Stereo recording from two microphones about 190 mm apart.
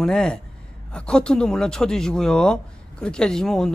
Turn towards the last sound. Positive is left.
turn(degrees=5)  # may be behind; listen again after turning